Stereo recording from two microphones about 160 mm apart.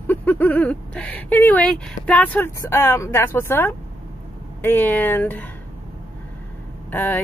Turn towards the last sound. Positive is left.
turn(degrees=10)  # may be behind; listen again after turning